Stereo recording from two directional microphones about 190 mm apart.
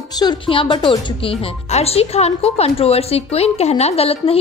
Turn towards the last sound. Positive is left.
turn(degrees=30)  # may be behind; listen again after turning